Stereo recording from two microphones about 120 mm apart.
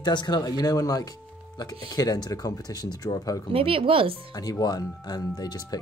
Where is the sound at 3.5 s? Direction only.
50° right (ahead or behind).